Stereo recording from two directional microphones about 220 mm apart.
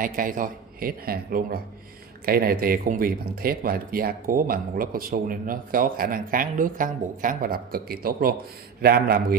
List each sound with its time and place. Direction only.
0.0 s a man's voice: 40° right (ahead or behind)